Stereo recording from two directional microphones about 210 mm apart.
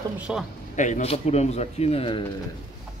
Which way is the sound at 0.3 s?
Centre (ahead or behind).